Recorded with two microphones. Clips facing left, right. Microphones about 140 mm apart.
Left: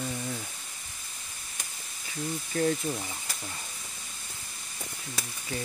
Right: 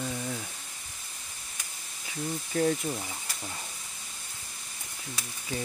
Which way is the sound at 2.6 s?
5° right (ahead or behind).